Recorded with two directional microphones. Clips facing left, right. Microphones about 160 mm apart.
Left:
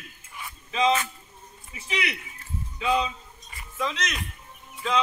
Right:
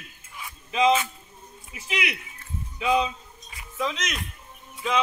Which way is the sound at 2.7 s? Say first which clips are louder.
Right 2 dB; 15° right (ahead or behind).